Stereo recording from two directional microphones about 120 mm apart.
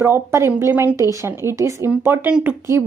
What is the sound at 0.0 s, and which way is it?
A woman's voice, 20° right (ahead or behind).